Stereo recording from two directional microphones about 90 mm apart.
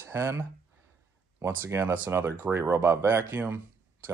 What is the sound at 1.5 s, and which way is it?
Speech, 25° right (ahead or behind).